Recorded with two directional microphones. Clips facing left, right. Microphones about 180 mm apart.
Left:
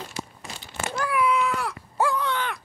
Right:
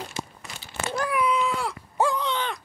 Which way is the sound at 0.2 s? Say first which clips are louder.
Even; 25° right (ahead or behind).